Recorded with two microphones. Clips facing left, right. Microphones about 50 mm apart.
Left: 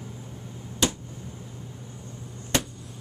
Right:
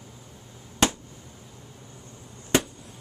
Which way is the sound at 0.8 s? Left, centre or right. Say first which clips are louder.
Right 3 dB; right.